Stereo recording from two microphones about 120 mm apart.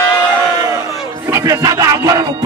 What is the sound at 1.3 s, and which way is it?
Music, 25° right (ahead or behind).